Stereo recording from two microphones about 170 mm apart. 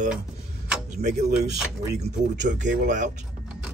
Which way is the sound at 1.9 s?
90° right.